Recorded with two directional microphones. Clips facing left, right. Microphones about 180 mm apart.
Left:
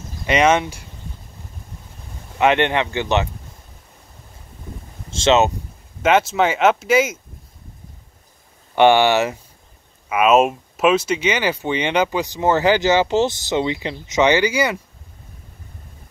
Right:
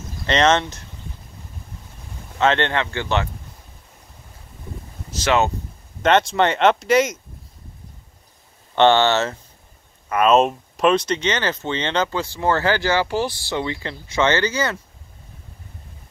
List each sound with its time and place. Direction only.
0.3 s speech: 10° left (ahead or behind)
2.3 s speech: 15° left (ahead or behind)
5.1 s speech: 25° left (ahead or behind)
6.0 s speech: 5° left (ahead or behind)
8.7 s speech: 10° left (ahead or behind)